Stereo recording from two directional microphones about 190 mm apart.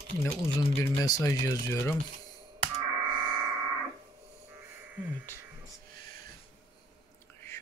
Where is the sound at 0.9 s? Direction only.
15° left (ahead or behind).